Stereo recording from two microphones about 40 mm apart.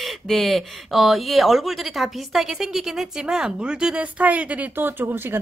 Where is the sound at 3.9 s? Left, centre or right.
Right.